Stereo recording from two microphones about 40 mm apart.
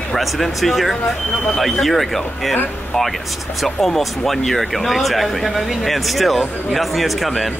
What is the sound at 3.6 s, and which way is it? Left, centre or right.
A man's voice, centre.